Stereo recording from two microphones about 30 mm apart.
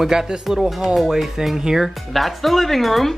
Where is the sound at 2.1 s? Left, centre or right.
Centre.